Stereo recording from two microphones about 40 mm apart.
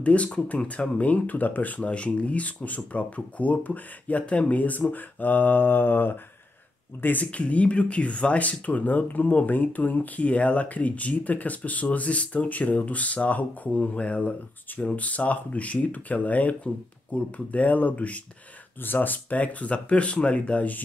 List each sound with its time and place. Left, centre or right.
0.0 s speech: left
1.8 s speech: left
7.0 s speech: left
7.2 s speech: left
18.8 s speech: left